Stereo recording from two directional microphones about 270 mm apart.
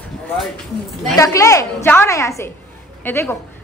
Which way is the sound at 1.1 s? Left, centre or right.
Centre.